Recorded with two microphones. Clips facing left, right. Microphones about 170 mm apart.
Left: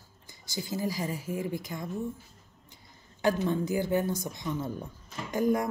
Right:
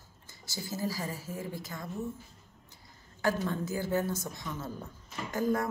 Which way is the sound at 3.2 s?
20° left (ahead or behind).